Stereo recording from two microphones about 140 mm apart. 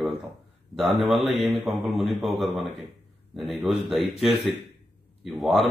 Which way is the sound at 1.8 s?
Centre (ahead or behind).